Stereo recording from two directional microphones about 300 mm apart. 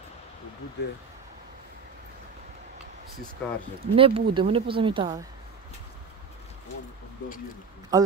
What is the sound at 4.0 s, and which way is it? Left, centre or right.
Speech, centre.